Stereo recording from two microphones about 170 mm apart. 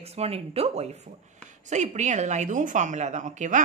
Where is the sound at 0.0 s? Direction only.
40° right (ahead or behind).